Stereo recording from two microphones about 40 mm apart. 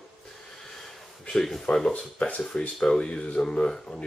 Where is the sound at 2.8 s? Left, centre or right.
Centre.